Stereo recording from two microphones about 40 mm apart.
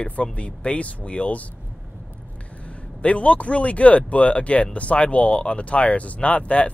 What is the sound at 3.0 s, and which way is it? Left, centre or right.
Speech, left.